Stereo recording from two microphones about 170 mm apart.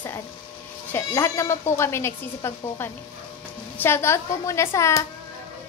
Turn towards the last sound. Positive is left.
turn(degrees=15)  # may be behind; listen again after turning